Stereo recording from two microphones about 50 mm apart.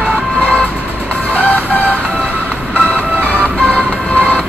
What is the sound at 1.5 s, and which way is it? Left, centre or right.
Music, left.